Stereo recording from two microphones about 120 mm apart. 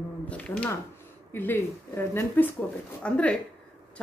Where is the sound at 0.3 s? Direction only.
10° left (ahead or behind).